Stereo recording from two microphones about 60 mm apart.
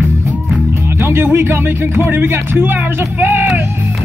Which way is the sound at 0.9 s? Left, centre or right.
Right.